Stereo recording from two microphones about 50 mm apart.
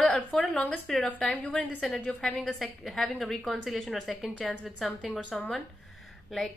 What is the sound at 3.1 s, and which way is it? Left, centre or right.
A woman's voice, centre.